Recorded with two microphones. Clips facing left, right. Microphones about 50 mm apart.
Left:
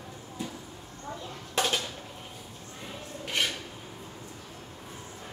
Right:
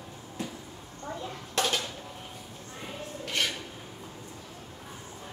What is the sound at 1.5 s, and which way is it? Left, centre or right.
Dishes, centre.